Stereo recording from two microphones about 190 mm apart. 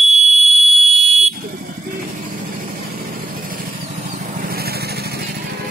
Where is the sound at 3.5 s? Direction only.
50° right (ahead or behind).